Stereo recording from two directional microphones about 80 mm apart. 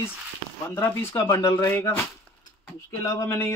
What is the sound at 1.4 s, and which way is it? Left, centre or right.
Speech, left.